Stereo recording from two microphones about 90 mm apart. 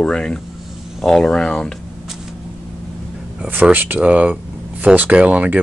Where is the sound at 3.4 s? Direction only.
20° right (ahead or behind).